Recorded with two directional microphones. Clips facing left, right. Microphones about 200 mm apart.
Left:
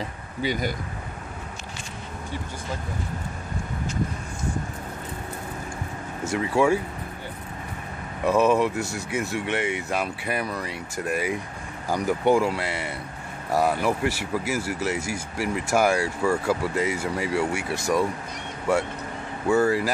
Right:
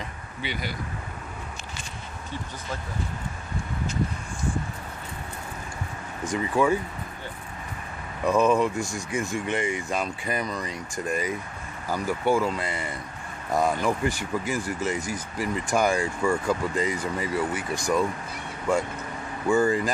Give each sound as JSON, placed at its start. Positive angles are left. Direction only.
{"t": 0.4, "sound": "speech", "side_deg": 45}
{"t": 6.2, "sound": "speech", "side_deg": 10}
{"t": 8.3, "sound": "speech", "side_deg": 5}
{"t": 9.5, "sound": "speech", "side_deg": 70}
{"t": 9.8, "sound": "speech", "side_deg": 5}
{"t": 12.6, "sound": "speech", "side_deg": 70}
{"t": 13.5, "sound": "speech", "side_deg": 5}
{"t": 19.4, "sound": "speech", "side_deg": 5}